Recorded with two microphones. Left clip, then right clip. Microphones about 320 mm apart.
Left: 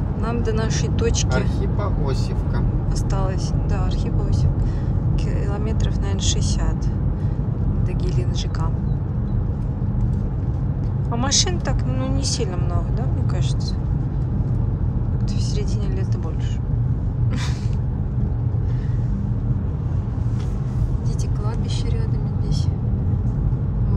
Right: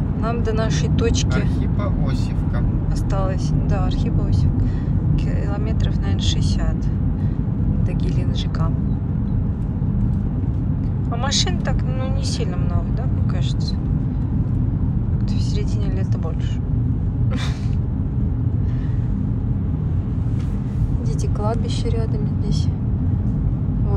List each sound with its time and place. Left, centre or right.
0.2 s speech: centre
3.2 s speech: centre
11.2 s speech: centre